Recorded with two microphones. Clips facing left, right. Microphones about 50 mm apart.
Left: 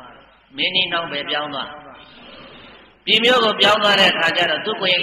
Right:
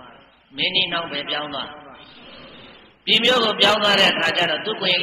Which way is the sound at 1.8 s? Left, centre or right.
Left.